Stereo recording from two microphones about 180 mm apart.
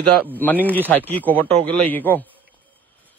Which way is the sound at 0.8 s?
10° left (ahead or behind).